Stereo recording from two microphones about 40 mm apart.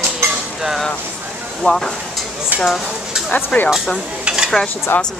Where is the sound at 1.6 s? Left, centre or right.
Centre.